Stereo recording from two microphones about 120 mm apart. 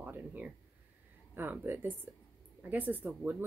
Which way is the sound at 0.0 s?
15° right (ahead or behind).